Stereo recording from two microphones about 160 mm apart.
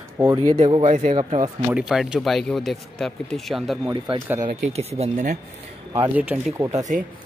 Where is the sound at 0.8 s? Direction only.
50° right (ahead or behind).